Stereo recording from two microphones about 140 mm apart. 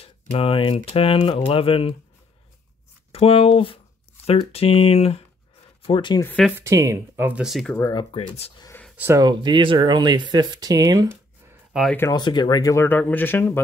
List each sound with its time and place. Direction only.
0.0 s speech: 40° left (ahead or behind)
3.1 s speech: 45° left (ahead or behind)
5.9 s speech: 35° left (ahead or behind)
6.6 s speech: 20° right (ahead or behind)
7.4 s speech: centre (ahead or behind)
7.9 s speech: 35° left (ahead or behind)
8.9 s speech: 15° right (ahead or behind)
9.2 s speech: 35° right (ahead or behind)
11.7 s speech: 5° right (ahead or behind)
12.1 s speech: 30° left (ahead or behind)
12.7 s speech: 15° left (ahead or behind)